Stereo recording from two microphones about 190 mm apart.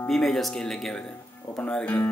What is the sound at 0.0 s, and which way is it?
Speech, centre (ahead or behind).